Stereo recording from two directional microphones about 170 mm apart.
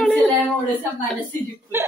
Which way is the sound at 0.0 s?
5° left (ahead or behind).